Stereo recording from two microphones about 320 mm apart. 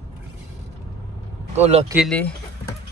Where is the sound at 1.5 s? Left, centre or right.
Centre.